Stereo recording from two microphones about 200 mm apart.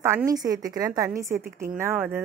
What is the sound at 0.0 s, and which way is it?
Speech, 15° right (ahead or behind).